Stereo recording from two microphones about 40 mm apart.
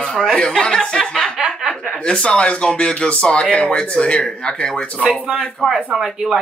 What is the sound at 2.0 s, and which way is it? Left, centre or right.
Speech, left.